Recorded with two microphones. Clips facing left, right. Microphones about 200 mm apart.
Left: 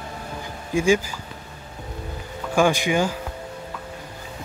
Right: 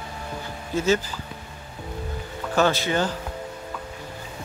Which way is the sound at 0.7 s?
10° left (ahead or behind).